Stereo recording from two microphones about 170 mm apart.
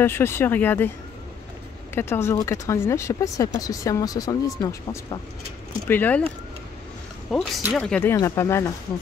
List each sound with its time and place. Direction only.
0.0 s speech: 15° left (ahead or behind)
2.0 s speech: 15° left (ahead or behind)